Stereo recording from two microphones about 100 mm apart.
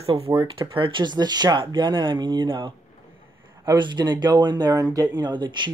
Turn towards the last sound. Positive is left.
turn(degrees=-50)  # may be behind; listen again after turning